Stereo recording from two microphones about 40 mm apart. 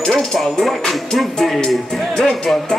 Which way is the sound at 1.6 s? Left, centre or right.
Centre.